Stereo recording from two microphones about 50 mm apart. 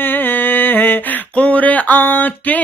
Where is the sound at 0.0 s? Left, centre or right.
Left.